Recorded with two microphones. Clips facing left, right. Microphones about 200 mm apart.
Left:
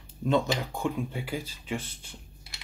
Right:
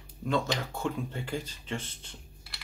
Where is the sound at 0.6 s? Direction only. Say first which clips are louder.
Left 2 dB; 15° left (ahead or behind).